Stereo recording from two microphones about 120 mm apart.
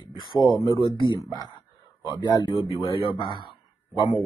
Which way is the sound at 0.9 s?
40° left (ahead or behind).